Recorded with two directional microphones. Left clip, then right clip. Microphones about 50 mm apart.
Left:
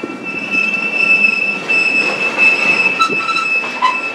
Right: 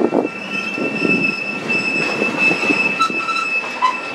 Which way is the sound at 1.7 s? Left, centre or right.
Left.